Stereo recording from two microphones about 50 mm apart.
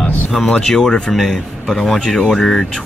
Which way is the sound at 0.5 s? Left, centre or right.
Centre.